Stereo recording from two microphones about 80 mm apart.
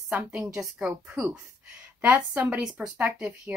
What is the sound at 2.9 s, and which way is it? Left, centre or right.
Speech, right.